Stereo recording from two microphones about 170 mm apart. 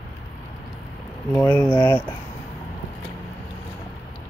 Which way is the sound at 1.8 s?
10° left (ahead or behind).